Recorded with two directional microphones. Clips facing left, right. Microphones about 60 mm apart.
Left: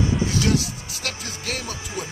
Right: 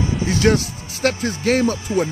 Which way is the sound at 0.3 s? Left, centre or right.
Right.